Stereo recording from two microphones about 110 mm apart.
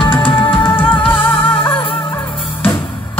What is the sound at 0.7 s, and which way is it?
Music, 15° left (ahead or behind).